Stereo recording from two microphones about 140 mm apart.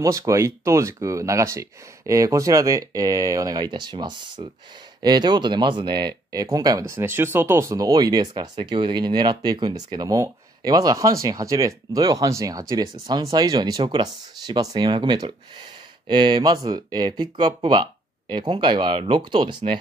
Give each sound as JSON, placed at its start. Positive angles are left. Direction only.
{"t": 0.0, "sound": "speech", "side_deg": -25}